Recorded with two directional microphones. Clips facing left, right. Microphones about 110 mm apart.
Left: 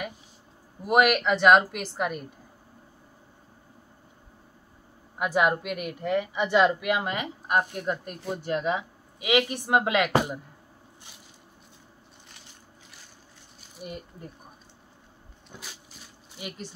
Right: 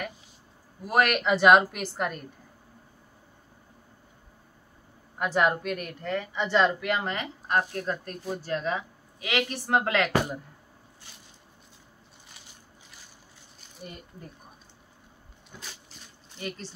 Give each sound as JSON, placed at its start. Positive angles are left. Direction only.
{"t": 0.8, "sound": "a woman's voice", "side_deg": 15}
{"t": 1.1, "sound": "a woman's voice", "side_deg": -5}
{"t": 5.2, "sound": "a woman's voice", "side_deg": 5}
{"t": 13.8, "sound": "a woman's voice", "side_deg": 10}
{"t": 16.3, "sound": "a woman's voice", "side_deg": 10}